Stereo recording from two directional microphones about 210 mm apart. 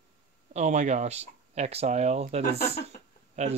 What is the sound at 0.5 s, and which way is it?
Speech, 35° right (ahead or behind).